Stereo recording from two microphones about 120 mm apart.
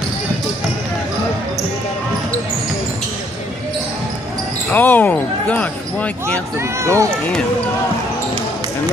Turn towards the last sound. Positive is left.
turn(degrees=-25)  # may be behind; listen again after turning